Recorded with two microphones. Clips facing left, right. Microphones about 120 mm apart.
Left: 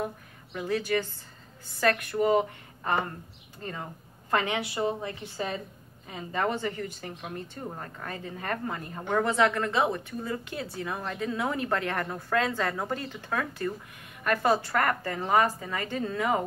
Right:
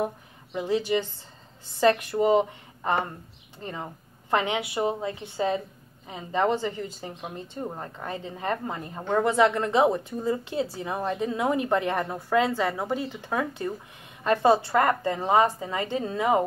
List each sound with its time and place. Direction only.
0.0 s a woman's voice: 20° right (ahead or behind)